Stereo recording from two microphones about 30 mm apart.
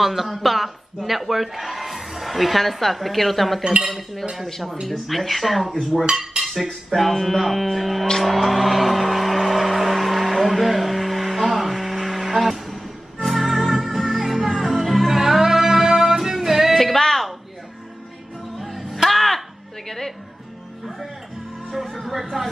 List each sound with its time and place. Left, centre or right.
0.0 s speech: centre
6.4 s cutlery: centre
6.7 s speech: centre
8.2 s music: centre
16.8 s music: centre
18.6 s music: centre
19.0 s music: centre
22.0 s speech: centre